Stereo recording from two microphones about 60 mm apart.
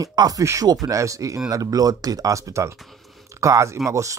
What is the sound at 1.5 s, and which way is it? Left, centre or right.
Speech, right.